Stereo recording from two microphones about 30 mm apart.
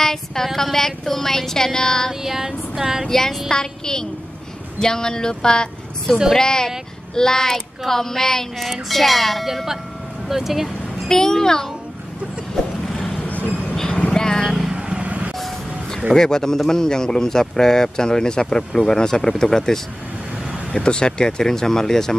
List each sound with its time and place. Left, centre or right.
0.0 s speech: centre
2.2 s a sound: centre
3.1 s speech: centre
3.4 s speech: left
8.8 s speech: centre
10.2 s vehicle: centre
11.1 s speech: centre
12.8 s vehicle: centre
13.2 s vehicle: left
13.7 s vehicle: left
14.7 s vehicle: right
15.0 s vehicle: right
16.1 s speech: centre
20.7 s speech: left